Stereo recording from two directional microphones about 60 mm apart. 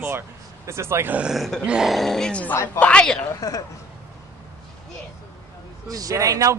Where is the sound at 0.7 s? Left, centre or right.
Right.